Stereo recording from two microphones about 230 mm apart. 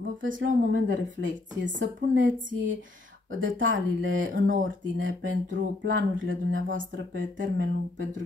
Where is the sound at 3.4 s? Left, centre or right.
Right.